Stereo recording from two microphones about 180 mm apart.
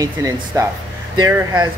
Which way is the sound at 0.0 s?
20° right (ahead or behind).